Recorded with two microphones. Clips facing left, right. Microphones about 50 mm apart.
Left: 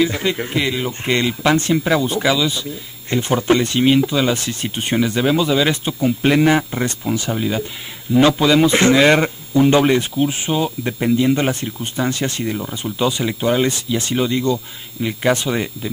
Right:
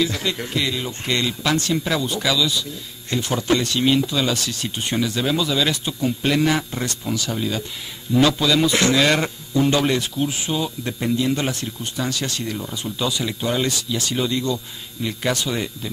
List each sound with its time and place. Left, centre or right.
0.0 s speech: left